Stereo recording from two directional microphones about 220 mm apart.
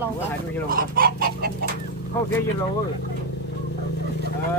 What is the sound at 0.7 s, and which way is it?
Chicken, 40° right (ahead or behind).